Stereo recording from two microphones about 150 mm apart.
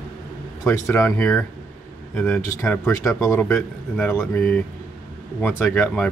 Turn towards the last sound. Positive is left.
turn(degrees=5)  # may be behind; listen again after turning